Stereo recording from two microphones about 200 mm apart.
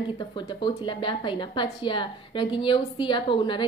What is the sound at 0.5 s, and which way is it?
A woman's voice, 25° left (ahead or behind).